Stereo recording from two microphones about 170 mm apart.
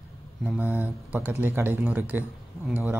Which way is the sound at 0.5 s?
10° right (ahead or behind).